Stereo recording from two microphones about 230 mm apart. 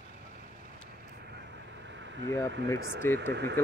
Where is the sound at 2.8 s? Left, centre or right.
Right.